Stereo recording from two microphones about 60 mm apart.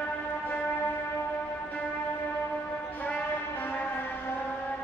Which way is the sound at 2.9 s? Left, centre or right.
Left.